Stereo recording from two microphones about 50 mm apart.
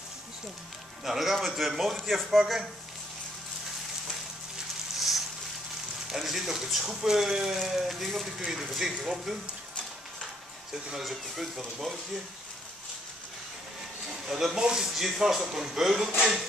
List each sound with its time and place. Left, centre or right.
1.0 s speech: centre
4.9 s a sound: centre
6.0 s speech: centre
8.9 s speech: centre
10.9 s speech: centre
14.3 s speech: centre